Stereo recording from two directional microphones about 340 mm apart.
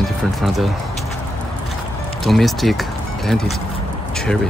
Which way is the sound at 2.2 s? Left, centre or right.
Centre.